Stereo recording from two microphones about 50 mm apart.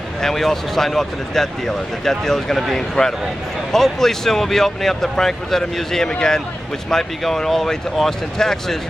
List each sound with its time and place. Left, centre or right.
0.2 s speech: centre